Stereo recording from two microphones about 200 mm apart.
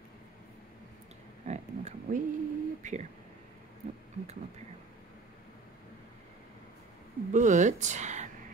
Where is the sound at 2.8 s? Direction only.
40° right (ahead or behind).